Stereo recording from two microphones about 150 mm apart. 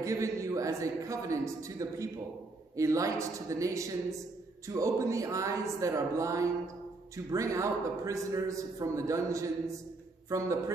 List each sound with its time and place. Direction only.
0.0 s a man's voice: 20° right (ahead or behind)